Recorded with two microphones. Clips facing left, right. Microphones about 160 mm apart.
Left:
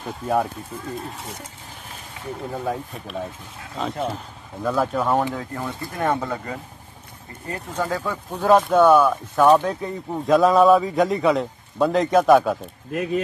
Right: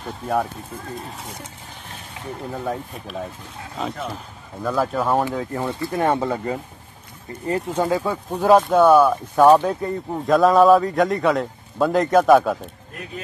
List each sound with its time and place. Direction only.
0.0 s a man's voice: centre (ahead or behind)
2.5 s a man's voice: centre (ahead or behind)
5.6 s speech: 25° right (ahead or behind)
7.4 s speech: 30° right (ahead or behind)
7.9 s speech: 15° right (ahead or behind)
8.5 s a man's voice: centre (ahead or behind)